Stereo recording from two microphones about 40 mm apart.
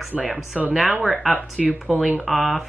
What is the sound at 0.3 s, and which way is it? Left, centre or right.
Speech, centre.